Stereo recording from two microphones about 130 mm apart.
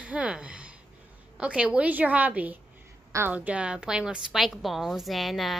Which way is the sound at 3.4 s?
10° right (ahead or behind).